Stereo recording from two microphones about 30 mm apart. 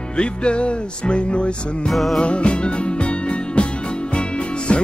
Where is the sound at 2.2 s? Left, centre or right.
Left.